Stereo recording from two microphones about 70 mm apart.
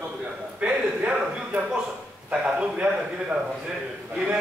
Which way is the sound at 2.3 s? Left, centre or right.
Centre.